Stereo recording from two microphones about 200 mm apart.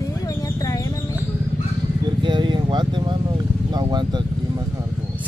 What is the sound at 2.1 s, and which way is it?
Vehicle, 25° right (ahead or behind).